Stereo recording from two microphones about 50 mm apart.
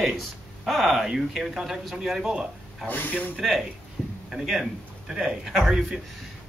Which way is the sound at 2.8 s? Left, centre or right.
Left.